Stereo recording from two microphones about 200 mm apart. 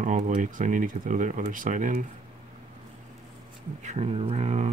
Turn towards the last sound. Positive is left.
turn(degrees=-35)  # may be behind; listen again after turning